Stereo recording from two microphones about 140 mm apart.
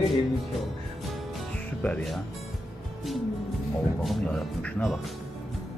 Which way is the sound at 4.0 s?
Centre (ahead or behind).